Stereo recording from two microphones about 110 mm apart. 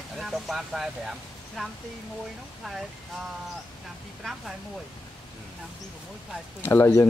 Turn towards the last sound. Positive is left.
turn(degrees=20)  # may be behind; listen again after turning